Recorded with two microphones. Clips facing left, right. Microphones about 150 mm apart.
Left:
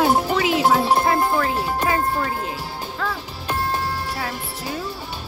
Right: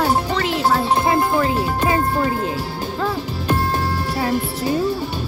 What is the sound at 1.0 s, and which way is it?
Music, 15° right (ahead or behind).